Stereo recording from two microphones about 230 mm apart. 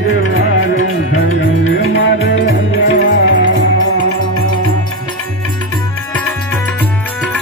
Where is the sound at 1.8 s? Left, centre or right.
Left.